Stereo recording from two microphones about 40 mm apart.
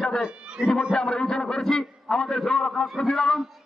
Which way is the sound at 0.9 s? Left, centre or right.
Centre.